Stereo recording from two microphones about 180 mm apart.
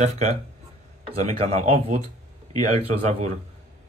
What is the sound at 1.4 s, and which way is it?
Speech, 35° right (ahead or behind).